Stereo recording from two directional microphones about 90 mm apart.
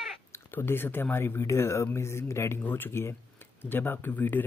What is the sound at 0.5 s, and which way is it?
Speech, 25° left (ahead or behind).